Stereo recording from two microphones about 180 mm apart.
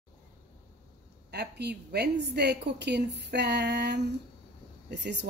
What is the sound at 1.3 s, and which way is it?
A woman's voice, 65° right (ahead or behind).